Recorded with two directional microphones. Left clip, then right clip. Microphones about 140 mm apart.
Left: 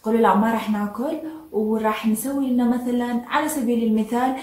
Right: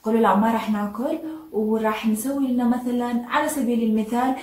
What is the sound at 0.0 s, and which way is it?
A woman's voice, 15° left (ahead or behind).